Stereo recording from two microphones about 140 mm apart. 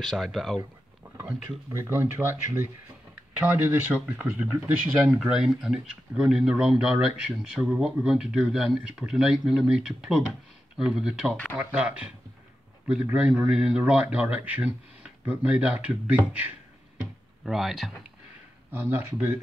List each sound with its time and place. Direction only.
0.0 s speech: centre (ahead or behind)
1.0 s a sound: 10° right (ahead or behind)
1.7 s a man's voice: 20° right (ahead or behind)
5.2 s a man's voice: centre (ahead or behind)
17.5 s speech: centre (ahead or behind)
18.7 s a man's voice: 15° right (ahead or behind)